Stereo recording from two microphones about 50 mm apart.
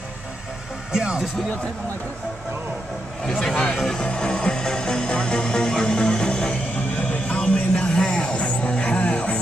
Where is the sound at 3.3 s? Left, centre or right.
Centre.